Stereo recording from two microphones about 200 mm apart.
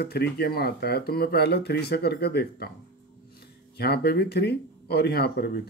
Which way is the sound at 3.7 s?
55° left (ahead or behind).